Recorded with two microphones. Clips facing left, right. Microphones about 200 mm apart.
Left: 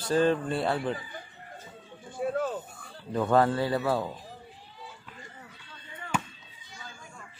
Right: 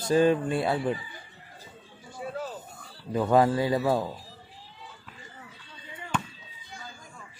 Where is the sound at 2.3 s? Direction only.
50° left (ahead or behind).